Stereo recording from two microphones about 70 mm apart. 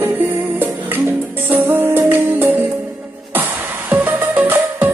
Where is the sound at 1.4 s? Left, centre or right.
Right.